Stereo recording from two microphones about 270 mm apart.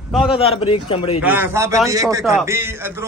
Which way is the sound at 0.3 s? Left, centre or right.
Left.